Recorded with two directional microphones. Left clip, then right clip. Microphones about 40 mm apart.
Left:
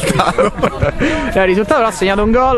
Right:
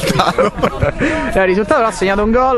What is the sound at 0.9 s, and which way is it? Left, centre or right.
A man's voice, left.